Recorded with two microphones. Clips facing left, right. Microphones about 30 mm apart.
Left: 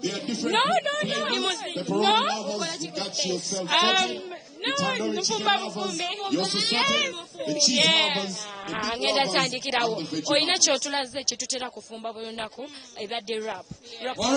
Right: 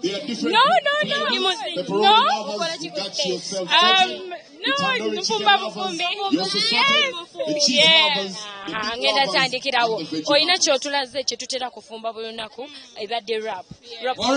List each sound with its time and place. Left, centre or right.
0.0 s a woman's voice: right
7.8 s a woman's voice: right